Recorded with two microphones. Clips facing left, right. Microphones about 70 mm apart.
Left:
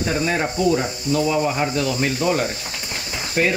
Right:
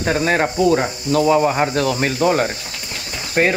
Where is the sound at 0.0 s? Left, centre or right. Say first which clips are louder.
Right 4 dB; right.